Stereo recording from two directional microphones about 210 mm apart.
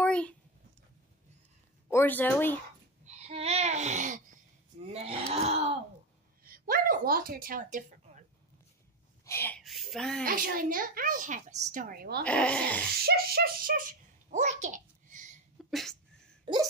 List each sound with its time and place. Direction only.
0.0 s a sound: 5° left (ahead or behind)
1.9 s speech: 10° left (ahead or behind)
3.1 s a sound: 30° right (ahead or behind)
4.8 s speech: 25° right (ahead or behind)
6.4 s speech: 45° right (ahead or behind)
9.2 s speech: 10° left (ahead or behind)
9.6 s speech: centre (ahead or behind)
10.2 s a woman's voice: 45° right (ahead or behind)
12.3 s speech: 5° left (ahead or behind)
13.0 s a child's voice: 45° right (ahead or behind)
15.7 s speech: centre (ahead or behind)
16.5 s speech: 25° right (ahead or behind)